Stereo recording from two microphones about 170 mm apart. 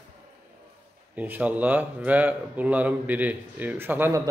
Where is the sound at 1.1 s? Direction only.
10° right (ahead or behind).